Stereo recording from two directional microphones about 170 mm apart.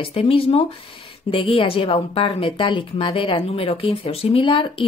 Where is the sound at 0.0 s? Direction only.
30° left (ahead or behind).